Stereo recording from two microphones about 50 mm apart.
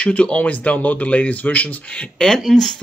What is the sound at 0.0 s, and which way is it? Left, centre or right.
Speech, left.